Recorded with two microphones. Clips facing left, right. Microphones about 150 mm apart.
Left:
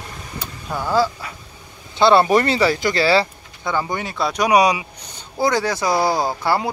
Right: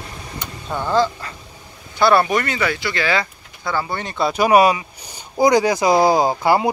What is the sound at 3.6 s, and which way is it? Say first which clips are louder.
Speech: left 1 dB; 20° left (ahead or behind).